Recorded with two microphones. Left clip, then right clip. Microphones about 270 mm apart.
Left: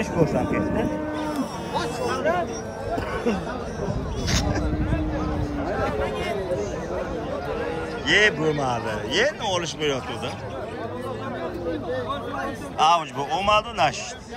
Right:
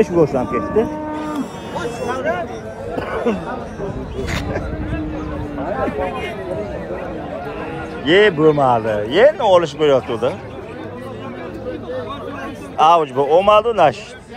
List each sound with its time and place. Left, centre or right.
0.0 s speech: centre
2.0 s speech: left
4.3 s speech: centre
8.0 s speech: centre
12.7 s speech: centre